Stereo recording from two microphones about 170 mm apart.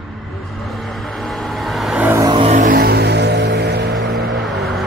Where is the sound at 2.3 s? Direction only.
40° right (ahead or behind); by 3.9 s 85° right.